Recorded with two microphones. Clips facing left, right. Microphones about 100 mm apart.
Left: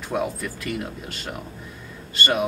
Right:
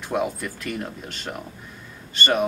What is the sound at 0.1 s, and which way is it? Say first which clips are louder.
Speech: right 1 dB; centre (ahead or behind).